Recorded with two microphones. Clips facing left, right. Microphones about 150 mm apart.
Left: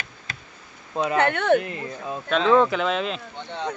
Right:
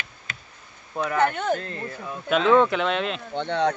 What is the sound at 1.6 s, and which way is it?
Speech, 15° left (ahead or behind).